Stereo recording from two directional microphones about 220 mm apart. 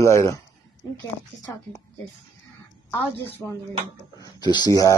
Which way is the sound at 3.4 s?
10° left (ahead or behind).